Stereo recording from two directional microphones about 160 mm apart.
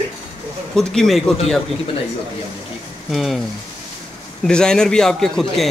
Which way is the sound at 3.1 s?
Centre (ahead or behind).